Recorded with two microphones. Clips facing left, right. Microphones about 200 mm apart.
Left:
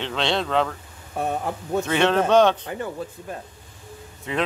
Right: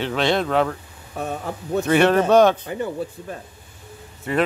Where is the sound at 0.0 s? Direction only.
10° right (ahead or behind).